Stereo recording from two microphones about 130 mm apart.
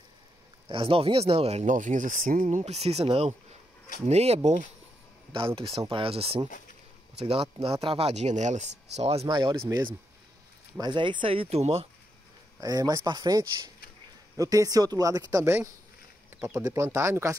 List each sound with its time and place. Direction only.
0.7 s speech: 45° right (ahead or behind)
5.3 s speech: 45° right (ahead or behind)
9.3 s speech: 35° right (ahead or behind); by 11.9 s 50° right (ahead or behind)
12.5 s a man's voice: 30° right (ahead or behind)